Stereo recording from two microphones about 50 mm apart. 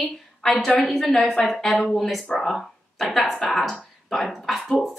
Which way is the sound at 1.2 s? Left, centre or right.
Left.